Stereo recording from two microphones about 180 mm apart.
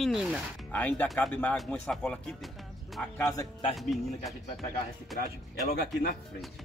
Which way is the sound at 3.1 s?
15° left (ahead or behind).